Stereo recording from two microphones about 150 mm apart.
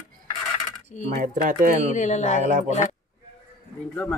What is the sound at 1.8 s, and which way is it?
Speech, 55° left (ahead or behind).